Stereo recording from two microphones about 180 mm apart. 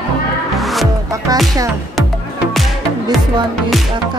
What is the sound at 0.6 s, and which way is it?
Music, centre (ahead or behind).